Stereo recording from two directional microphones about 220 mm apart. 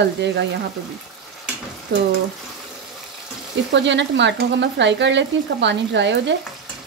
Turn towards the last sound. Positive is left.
turn(degrees=-55)  # may be behind; listen again after turning